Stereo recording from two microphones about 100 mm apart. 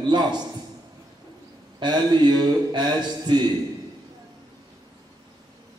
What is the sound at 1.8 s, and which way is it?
Speech, 45° right (ahead or behind).